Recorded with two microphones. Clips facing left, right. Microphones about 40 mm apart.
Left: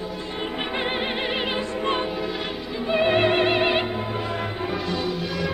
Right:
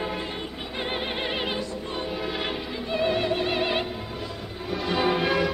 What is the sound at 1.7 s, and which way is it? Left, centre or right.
Music, left.